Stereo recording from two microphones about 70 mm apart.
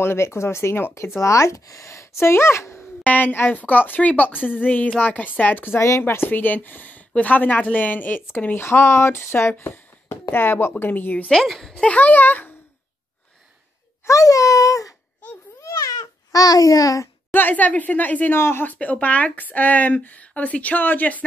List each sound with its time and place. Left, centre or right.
0.0 s speech: left
3.0 s speech: left
4.3 s a woman's voice: centre
4.6 s speech: left
5.8 s speech: left
9.6 s a sound: left
10.3 s speech: left
11.2 s speech: centre; by 12.5 s left
14.0 s speech: left
15.6 s baby cry: left
16.3 s a child's voice: left
17.3 s speech: left
18.4 s speech: left
18.7 s speech: left